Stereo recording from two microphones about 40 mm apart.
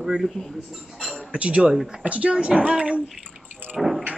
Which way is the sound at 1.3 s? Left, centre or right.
Right.